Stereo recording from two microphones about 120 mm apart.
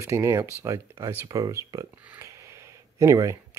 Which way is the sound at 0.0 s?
25° right (ahead or behind).